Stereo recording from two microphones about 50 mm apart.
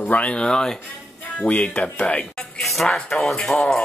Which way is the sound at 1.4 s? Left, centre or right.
Left.